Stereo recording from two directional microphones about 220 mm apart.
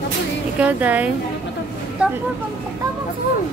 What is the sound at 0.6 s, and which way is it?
A woman's voice, 5° right (ahead or behind).